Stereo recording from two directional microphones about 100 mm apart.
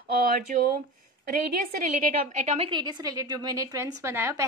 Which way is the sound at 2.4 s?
90° right.